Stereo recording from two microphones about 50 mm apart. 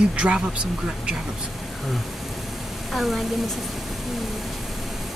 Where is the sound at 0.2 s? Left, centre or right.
Right.